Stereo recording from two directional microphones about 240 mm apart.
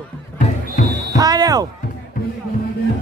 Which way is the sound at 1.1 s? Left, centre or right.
Centre.